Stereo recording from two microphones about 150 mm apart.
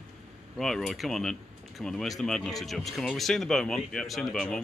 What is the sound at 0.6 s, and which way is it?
Speech, centre (ahead or behind).